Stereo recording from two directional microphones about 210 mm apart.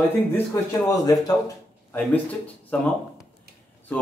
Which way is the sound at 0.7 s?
15° left (ahead or behind).